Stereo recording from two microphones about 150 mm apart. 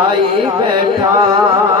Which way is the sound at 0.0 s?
30° right (ahead or behind).